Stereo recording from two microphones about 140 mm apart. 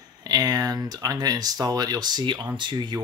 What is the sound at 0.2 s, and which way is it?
Speech, 25° right (ahead or behind).